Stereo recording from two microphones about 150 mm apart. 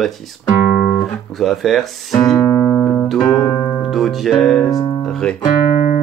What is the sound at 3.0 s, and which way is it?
Music, centre (ahead or behind).